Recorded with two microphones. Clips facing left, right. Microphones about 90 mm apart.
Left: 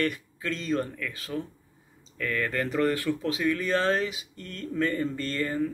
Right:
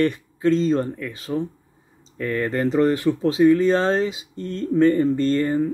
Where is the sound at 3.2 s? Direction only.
30° right (ahead or behind).